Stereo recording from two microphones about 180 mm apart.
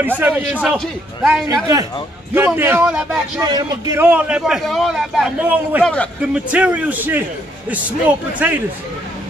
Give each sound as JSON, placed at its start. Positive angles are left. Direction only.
{"t": 0.0, "sound": "a man's voice", "side_deg": -10}
{"t": 3.3, "sound": "a man's voice", "side_deg": -20}
{"t": 4.0, "sound": "a man's voice", "side_deg": -10}